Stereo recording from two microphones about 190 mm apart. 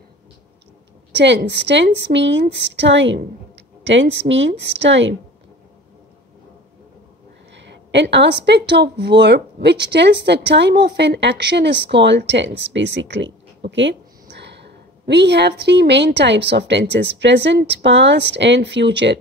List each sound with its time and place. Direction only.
1.1 s speech: 65° right (ahead or behind)
7.5 s a woman's voice: 65° right (ahead or behind)